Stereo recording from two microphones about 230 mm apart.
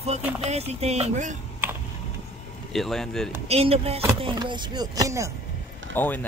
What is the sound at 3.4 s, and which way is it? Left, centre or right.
Speech, right.